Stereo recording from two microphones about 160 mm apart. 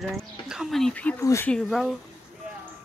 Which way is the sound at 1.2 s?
20° left (ahead or behind).